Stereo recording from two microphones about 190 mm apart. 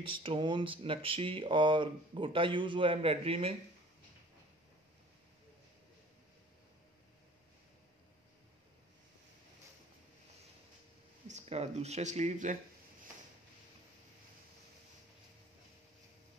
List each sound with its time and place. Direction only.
0.2 s speech: 25° right (ahead or behind)
11.2 s speech: 35° right (ahead or behind)